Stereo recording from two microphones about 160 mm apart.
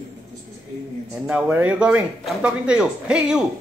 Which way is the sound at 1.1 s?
10° right (ahead or behind).